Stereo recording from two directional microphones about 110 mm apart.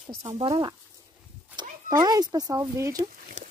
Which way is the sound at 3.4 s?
90° right.